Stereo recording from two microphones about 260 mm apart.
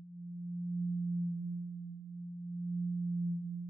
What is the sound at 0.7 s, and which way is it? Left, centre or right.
Singing bowl, centre.